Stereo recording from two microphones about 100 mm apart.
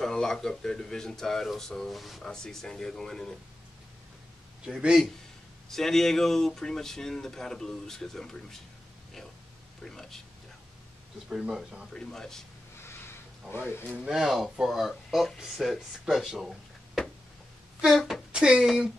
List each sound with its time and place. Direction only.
0.0 s speech: 5° left (ahead or behind)
4.6 s speech: 5° right (ahead or behind)
5.7 s speech: 5° left (ahead or behind)
9.8 s speech: 5° left (ahead or behind)
11.2 s speech: 5° right (ahead or behind)
11.9 s speech: 5° left (ahead or behind)
12.8 s a sound: 25° left (ahead or behind)
14.0 s speech: 5° right (ahead or behind)